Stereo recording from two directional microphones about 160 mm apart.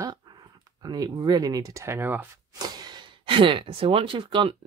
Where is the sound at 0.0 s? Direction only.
25° right (ahead or behind).